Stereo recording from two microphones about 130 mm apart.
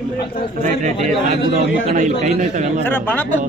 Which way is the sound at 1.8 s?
65° right (ahead or behind).